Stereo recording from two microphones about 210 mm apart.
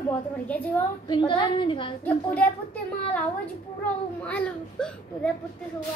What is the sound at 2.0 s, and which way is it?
Speech, 5° left (ahead or behind).